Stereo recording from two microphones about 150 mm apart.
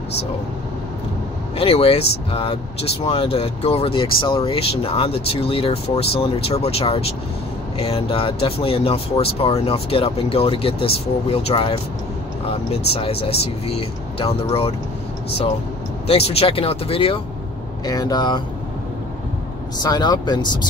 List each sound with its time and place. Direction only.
1.6 s speech: 40° left (ahead or behind)
16.1 s speech: 40° left (ahead or behind)
17.8 s speech: 25° left (ahead or behind)
19.8 s speech: 25° left (ahead or behind)